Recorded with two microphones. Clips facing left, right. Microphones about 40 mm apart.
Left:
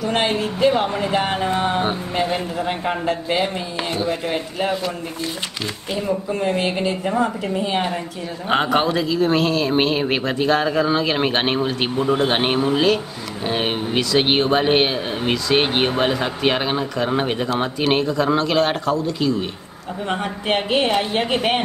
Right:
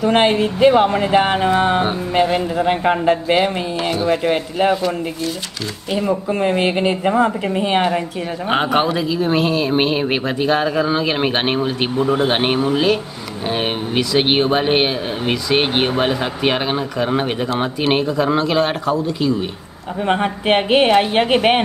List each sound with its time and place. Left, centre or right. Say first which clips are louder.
0.0 s speech: right 6 dB; right
0.4 s a man's voice: right 5 dB; centre
0.9 s speech: right 5 dB; right
6.0 s speech: right 3 dB; right
8.5 s a man's voice: right 1 dB; centre
20.1 s a woman's voice: right 6 dB; right